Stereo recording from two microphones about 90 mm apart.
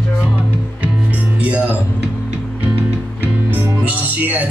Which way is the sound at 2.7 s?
20° right (ahead or behind).